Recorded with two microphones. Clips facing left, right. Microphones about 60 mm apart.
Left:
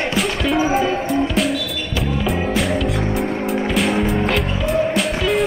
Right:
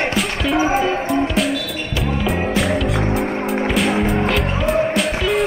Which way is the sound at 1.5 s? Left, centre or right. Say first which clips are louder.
Even; right.